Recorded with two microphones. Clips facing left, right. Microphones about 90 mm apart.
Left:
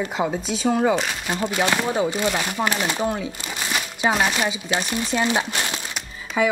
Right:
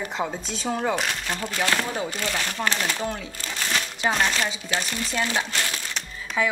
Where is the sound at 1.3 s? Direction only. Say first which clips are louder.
Left 5 dB; 20° left (ahead or behind).